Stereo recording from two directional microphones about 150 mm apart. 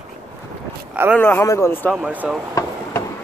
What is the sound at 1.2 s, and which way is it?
Speech, 10° left (ahead or behind).